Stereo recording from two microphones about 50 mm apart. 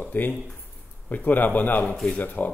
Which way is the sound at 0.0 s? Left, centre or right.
Left.